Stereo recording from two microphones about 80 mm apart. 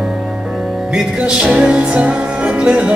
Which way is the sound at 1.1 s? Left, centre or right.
Centre.